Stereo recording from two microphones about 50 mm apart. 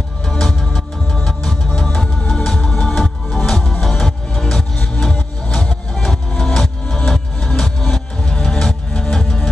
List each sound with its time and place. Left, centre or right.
0.4 s music: centre
5.9 s music: centre